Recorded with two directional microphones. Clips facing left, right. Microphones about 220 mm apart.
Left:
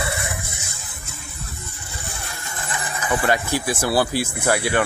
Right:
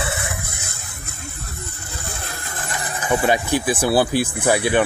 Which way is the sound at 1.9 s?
90° right.